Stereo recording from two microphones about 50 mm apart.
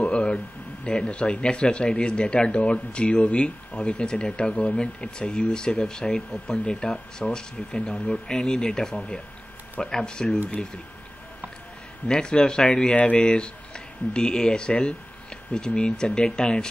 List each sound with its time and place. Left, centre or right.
0.0 s a sound: left
0.8 s speech: left
12.1 s speech: centre
12.9 s speech: left
13.2 s speech: centre